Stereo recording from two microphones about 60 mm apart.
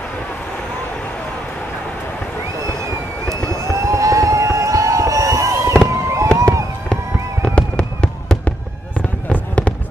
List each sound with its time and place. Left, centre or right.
3.4 s a sound: right
5.9 s fireworks: right
6.3 s fireworks: right
7.4 s fireworks: centre